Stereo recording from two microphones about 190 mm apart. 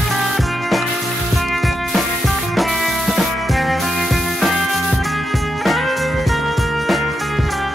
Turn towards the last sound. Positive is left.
turn(degrees=0)  # may be behind; listen again after turning